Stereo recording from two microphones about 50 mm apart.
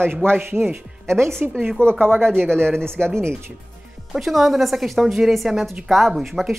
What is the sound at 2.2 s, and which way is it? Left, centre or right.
Speech, centre.